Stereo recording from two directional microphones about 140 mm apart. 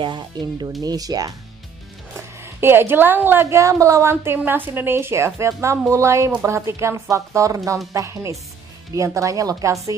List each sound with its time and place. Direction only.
0.0 s a woman's voice: 35° right (ahead or behind)